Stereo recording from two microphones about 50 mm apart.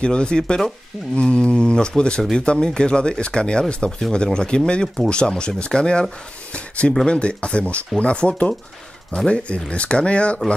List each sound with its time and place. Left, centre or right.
0.0 s speech: centre
1.1 s speech: left
7.1 s speech: left